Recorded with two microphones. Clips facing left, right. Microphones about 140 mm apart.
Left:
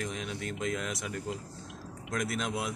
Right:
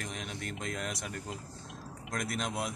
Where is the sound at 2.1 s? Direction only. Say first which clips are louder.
Left 2 dB; 45° right (ahead or behind).